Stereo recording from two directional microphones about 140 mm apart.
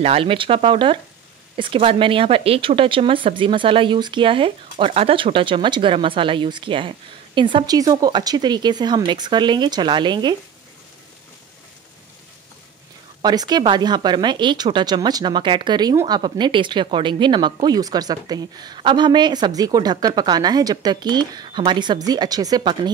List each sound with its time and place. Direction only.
0.0 s speech: 45° right (ahead or behind)
13.2 s speech: 30° right (ahead or behind)